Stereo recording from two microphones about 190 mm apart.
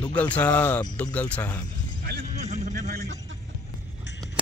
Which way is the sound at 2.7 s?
50° right (ahead or behind).